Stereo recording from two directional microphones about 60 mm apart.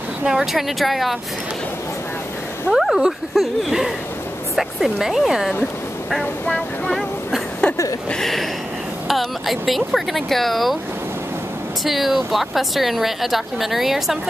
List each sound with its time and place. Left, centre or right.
0.2 s a woman's voice: centre
2.7 s a woman's voice: centre
7.6 s a sound: centre
8.1 s a woman's voice: centre
11.8 s a woman's voice: centre